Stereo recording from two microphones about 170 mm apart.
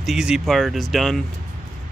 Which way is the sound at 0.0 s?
5° right (ahead or behind).